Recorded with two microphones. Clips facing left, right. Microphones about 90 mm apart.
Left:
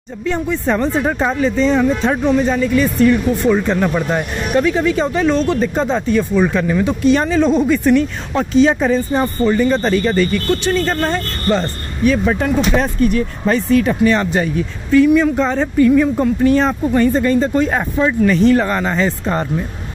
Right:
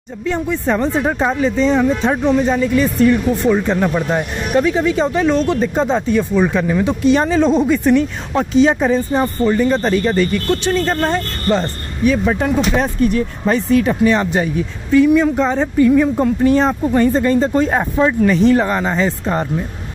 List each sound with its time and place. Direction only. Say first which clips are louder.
0.2 s speech: even; 10° right (ahead or behind); by 3.2 s 30° right (ahead or behind)
3.4 s speech: even; 15° right (ahead or behind)
15.9 s speech: even; 30° right (ahead or behind); by 19.4 s 10° right (ahead or behind)